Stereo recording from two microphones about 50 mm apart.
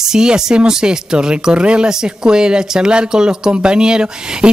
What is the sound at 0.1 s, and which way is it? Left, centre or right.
Speech, centre.